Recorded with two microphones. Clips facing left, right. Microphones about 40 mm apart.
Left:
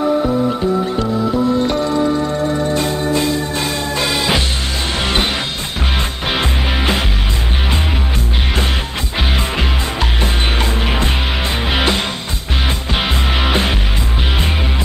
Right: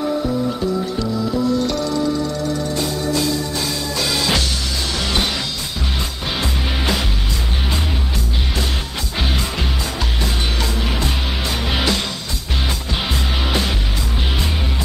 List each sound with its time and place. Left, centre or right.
0.0 s music: left
9.6 s music: left
13.4 s music: left